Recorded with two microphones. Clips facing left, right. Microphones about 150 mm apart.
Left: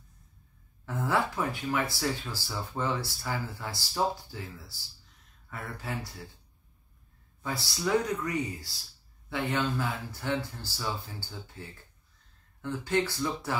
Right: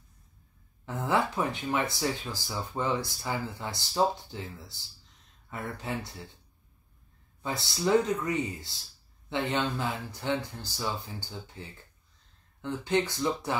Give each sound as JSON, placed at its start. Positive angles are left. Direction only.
{"t": 0.8, "sound": "speech", "side_deg": -20}
{"t": 7.4, "sound": "speech", "side_deg": -20}